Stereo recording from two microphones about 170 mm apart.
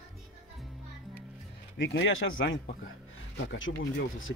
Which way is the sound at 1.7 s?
90° left.